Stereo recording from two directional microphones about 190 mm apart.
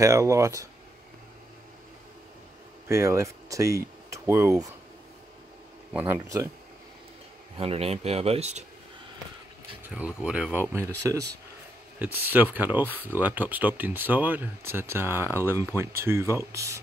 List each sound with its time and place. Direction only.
0.0 s speech: 15° right (ahead or behind)
2.9 s speech: 15° right (ahead or behind)
5.9 s speech: 15° right (ahead or behind)
7.5 s speech: 30° right (ahead or behind)
9.8 s speech: 5° right (ahead or behind)